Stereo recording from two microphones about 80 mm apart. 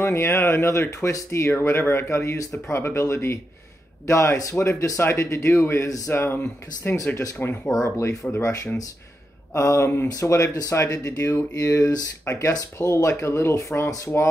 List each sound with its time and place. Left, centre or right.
0.0 s speech: left
6.0 s speech: left
7.3 s speech: left
7.8 s speech: left
9.5 s speech: left